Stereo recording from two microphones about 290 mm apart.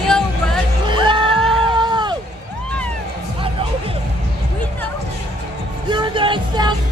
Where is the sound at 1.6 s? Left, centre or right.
Centre.